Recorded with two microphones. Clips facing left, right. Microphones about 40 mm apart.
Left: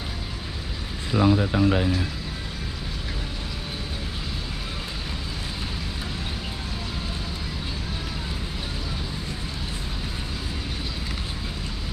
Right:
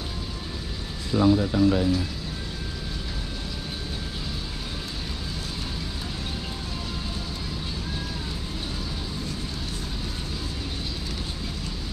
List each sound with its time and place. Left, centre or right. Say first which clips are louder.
1.1 s speech: even; left